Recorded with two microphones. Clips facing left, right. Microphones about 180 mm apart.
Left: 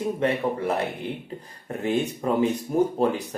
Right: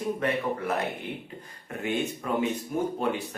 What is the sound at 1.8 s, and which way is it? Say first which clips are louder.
Speech: left 4 dB; 35° left (ahead or behind).